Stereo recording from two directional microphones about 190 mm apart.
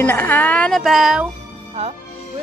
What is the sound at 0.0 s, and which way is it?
A woman's voice, 10° left (ahead or behind).